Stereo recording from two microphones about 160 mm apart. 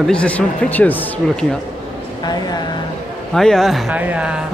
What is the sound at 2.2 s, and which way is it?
Speech, 25° left (ahead or behind).